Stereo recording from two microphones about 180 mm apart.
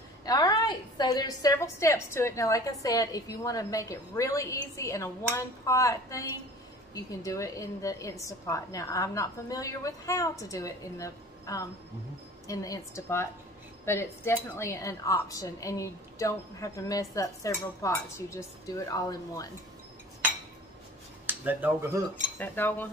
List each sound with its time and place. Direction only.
0.2 s a woman's voice: 20° left (ahead or behind)
21.3 s speech: 10° right (ahead or behind)
22.4 s a woman's voice: 10° left (ahead or behind)